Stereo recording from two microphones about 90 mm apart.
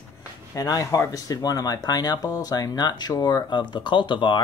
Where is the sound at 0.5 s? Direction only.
40° left (ahead or behind).